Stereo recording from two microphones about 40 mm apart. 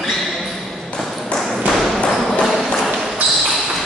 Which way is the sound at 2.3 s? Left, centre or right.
Centre.